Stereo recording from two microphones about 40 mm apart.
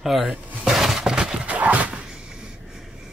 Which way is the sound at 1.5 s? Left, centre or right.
Right.